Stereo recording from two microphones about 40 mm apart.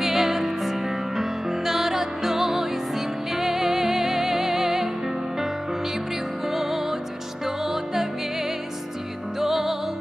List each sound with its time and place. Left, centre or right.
0.0 s music: centre
6.5 s music: centre
9.4 s music: centre